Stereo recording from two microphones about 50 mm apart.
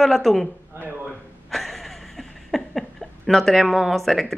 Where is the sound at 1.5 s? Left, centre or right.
Centre.